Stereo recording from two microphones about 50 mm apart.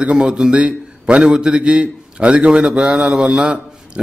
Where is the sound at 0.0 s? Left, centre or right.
Centre.